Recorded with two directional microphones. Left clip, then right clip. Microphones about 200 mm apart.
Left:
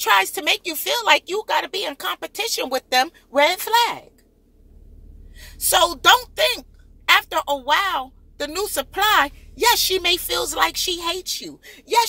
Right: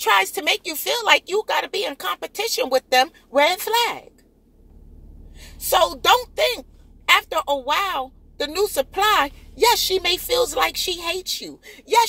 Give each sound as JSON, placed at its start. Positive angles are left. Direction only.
{"t": 0.3, "sound": "a woman's voice", "side_deg": 15}
{"t": 5.9, "sound": "a woman's voice", "side_deg": 15}